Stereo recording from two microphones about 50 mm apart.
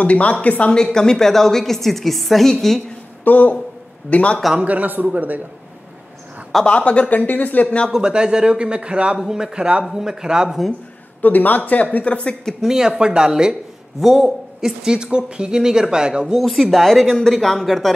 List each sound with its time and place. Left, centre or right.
0.0 s a woman's voice: left
0.9 s a woman's voice: centre
3.3 s speech: left
4.1 s a woman's voice: left
4.6 s a man's voice: right
6.6 s speech: left
7.6 s a woman's voice: left
8.0 s speech: centre
11.2 s speech: left
12.6 s speech: centre
16.3 s speech: centre